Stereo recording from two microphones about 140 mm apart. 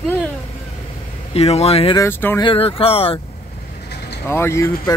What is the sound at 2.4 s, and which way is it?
Speech, 40° left (ahead or behind).